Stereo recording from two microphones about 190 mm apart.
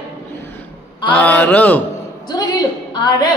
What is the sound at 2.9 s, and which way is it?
Speech, 20° left (ahead or behind).